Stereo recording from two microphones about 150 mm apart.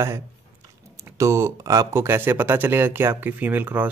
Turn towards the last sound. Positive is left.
turn(degrees=-10)  # may be behind; listen again after turning